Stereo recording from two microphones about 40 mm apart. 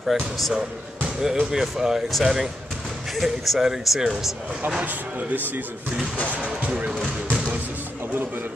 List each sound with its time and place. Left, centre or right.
0.0 s speech: centre
1.0 s speech: centre
6.3 s speech: right
7.2 s music: right